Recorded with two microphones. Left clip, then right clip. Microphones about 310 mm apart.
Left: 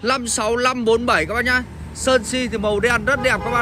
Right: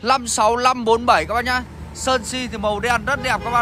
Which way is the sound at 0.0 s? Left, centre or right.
Centre.